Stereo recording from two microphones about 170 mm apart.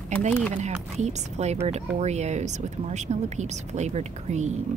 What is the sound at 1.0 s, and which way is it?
A woman's voice, 40° right (ahead or behind).